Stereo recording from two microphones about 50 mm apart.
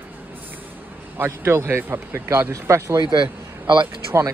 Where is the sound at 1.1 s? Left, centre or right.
Right.